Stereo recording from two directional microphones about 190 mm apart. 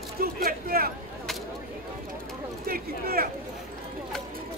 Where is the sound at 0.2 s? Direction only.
50° right (ahead or behind).